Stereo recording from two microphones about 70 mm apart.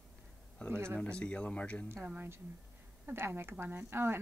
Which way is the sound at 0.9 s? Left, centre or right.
Centre.